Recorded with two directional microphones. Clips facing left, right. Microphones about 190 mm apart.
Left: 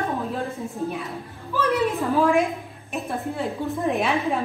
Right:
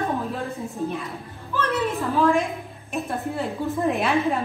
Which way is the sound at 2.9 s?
Centre (ahead or behind).